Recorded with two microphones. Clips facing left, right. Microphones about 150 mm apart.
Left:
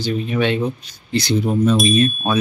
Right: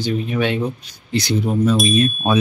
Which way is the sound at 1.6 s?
Centre (ahead or behind).